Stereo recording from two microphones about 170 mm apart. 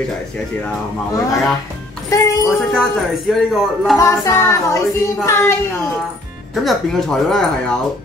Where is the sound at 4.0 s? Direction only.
15° left (ahead or behind).